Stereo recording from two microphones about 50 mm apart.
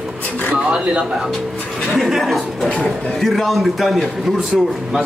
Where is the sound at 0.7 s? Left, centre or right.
Right.